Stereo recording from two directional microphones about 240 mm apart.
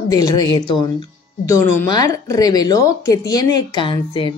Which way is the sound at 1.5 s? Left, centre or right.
Centre.